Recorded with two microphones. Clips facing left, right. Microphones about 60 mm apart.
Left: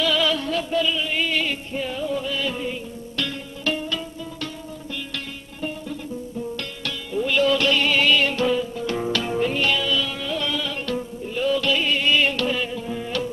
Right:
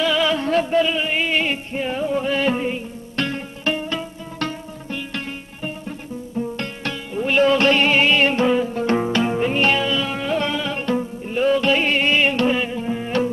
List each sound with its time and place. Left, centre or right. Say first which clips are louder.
0.0 s music: right 2 dB; right
0.5 s a sound: right 5 dB; right
4.9 s music: right 6 dB; right
9.0 s music: right 3 dB; right
9.6 s music: right 4 dB; right